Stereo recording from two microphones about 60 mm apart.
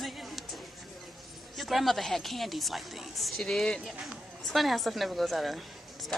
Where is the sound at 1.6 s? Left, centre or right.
Centre.